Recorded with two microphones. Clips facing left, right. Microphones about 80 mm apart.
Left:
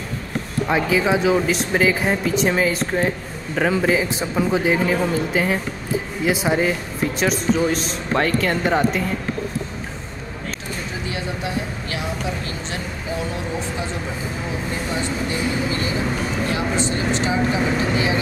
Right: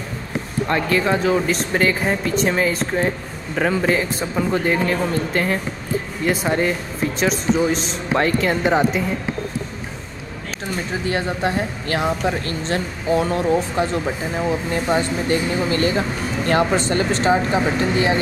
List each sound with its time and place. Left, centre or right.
0.7 s speech: centre
11.1 s speech: right